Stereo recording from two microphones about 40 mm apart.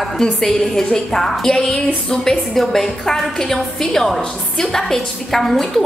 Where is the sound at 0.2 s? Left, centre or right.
Centre.